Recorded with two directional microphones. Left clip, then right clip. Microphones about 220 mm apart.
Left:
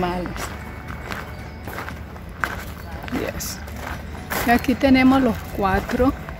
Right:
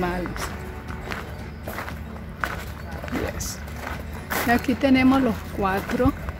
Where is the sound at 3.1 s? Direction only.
Centre (ahead or behind).